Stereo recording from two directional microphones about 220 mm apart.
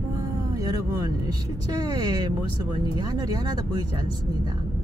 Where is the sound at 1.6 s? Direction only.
15° right (ahead or behind).